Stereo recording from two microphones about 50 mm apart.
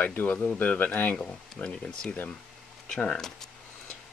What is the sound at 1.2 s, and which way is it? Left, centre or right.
Speech, left.